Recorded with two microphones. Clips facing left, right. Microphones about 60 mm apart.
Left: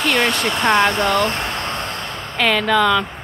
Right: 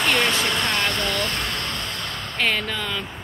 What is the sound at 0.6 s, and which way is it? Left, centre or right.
Speech, left.